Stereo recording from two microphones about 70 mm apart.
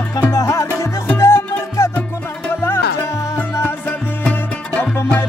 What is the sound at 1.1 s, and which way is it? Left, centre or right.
Music, left.